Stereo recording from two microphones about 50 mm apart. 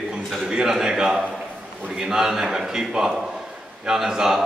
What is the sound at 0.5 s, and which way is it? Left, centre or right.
A man's voice, centre.